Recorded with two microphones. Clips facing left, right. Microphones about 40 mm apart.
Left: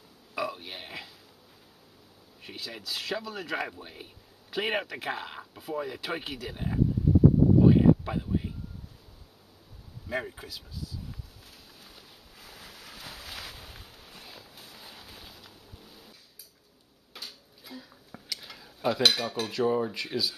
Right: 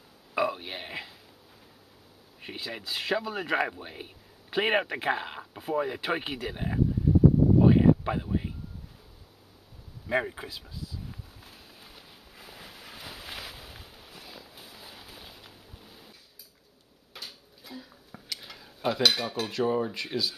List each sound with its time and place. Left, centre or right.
0.3 s burping: right
2.4 s speech: right
7.5 s a sound: centre
10.0 s speech: right
11.1 s a sound: centre
19.0 s cutlery: centre